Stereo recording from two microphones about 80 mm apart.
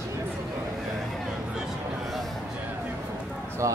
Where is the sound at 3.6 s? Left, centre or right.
Right.